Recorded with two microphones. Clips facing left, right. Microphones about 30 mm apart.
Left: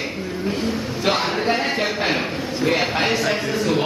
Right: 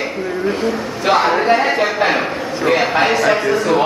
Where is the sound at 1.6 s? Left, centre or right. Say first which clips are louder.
Right 6 dB; centre.